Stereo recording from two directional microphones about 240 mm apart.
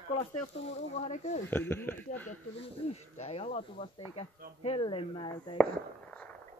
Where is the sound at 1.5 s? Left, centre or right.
Centre.